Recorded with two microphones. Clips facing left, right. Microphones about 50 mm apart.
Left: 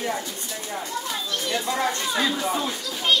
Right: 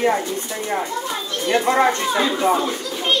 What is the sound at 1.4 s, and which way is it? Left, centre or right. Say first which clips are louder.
Speech: right 10 dB; right.